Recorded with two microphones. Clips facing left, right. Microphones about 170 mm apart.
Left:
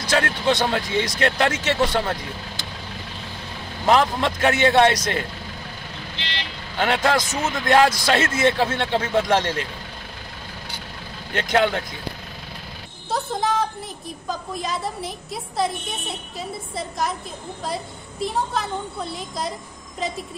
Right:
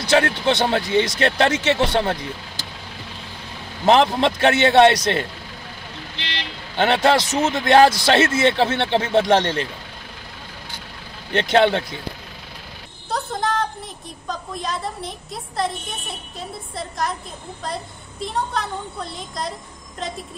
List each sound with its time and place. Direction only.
0.2 s speech: 25° right (ahead or behind)
3.8 s speech: 25° right (ahead or behind)
6.8 s speech: 25° right (ahead or behind)
11.3 s speech: 25° right (ahead or behind)
13.1 s music: centre (ahead or behind)
14.2 s a woman's voice: centre (ahead or behind)
18.2 s a woman's voice: centre (ahead or behind)